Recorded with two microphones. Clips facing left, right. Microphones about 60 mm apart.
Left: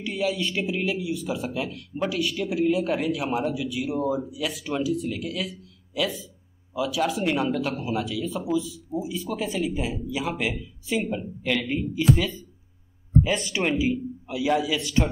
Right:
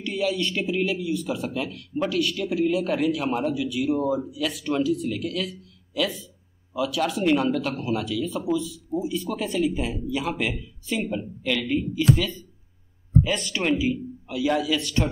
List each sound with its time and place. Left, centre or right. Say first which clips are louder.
0.0 s a man's voice: right 1 dB; centre
13.2 s speech: left 1 dB; centre